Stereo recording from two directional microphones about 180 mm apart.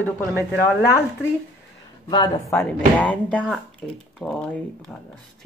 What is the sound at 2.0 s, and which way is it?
Speech, 25° left (ahead or behind).